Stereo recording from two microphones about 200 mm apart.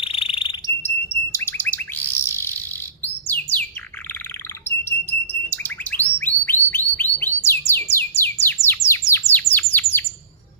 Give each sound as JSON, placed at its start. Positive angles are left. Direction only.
{"t": 0.0, "sound": "bird", "side_deg": 30}
{"t": 1.3, "sound": "bird", "side_deg": 10}
{"t": 4.6, "sound": "bird", "side_deg": 10}